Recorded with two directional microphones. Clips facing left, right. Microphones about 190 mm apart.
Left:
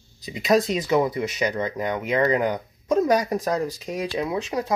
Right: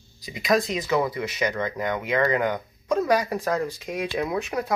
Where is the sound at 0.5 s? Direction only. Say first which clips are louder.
Left 3 dB; 20° left (ahead or behind).